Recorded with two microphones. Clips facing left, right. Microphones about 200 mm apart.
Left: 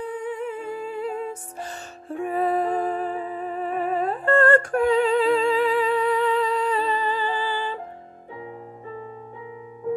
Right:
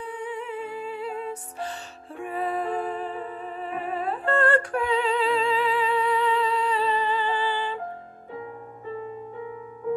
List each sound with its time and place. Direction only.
0.0 s music: 45° left (ahead or behind)